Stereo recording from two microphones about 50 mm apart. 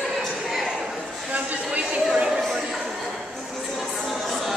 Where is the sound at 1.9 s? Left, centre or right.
Centre.